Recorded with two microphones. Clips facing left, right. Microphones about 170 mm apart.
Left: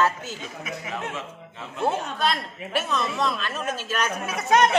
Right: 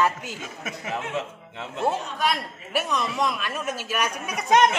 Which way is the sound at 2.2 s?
10° right (ahead or behind).